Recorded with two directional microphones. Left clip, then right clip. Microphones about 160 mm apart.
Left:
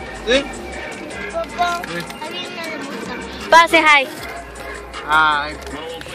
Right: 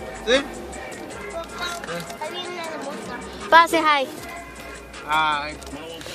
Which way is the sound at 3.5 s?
5° right (ahead or behind).